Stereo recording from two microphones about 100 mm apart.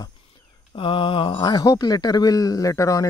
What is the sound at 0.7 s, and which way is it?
Speech, 60° left (ahead or behind).